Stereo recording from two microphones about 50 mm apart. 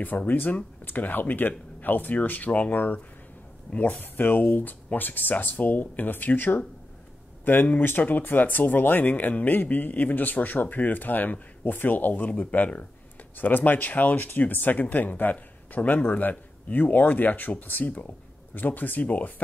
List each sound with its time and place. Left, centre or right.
0.3 s speech: left
7.8 s speech: left